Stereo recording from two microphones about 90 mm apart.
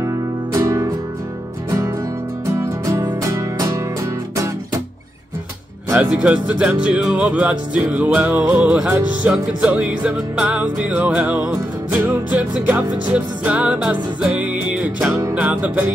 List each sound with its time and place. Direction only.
0.0 s music: 35° right (ahead or behind)
2.6 s music: 35° right (ahead or behind)
6.0 s music: 15° right (ahead or behind)